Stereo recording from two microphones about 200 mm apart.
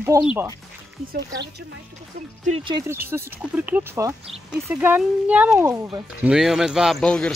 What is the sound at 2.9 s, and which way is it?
Speech, 10° right (ahead or behind).